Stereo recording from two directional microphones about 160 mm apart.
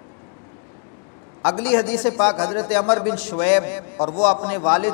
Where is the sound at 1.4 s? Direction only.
10° left (ahead or behind).